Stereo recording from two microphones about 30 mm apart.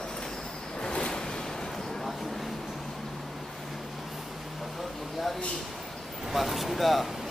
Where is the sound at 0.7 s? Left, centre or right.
Left.